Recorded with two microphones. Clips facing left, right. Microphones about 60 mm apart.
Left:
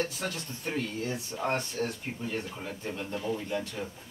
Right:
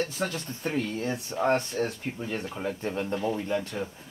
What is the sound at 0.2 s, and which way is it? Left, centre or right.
Speech, right.